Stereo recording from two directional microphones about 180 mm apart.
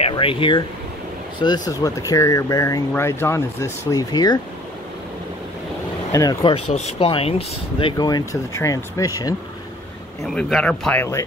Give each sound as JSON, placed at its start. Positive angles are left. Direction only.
{"t": 0.0, "sound": "speech", "side_deg": 30}
{"t": 6.1, "sound": "speech", "side_deg": 25}
{"t": 10.2, "sound": "speech", "side_deg": 5}